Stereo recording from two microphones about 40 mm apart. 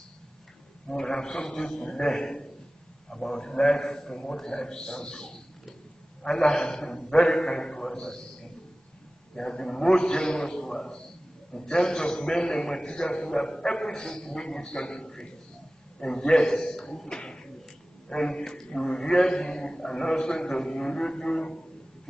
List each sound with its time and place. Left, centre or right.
0.8 s a man's voice: centre
9.3 s a man's voice: centre
17.2 s a sound: centre
18.1 s a man's voice: centre